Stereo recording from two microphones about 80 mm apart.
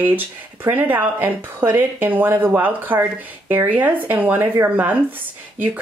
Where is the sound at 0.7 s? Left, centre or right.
Right.